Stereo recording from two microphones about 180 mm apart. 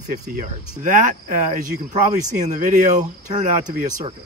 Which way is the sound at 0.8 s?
45° right (ahead or behind).